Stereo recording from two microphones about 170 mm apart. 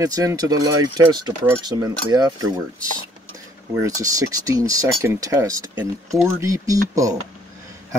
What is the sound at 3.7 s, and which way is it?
Speech, 20° right (ahead or behind).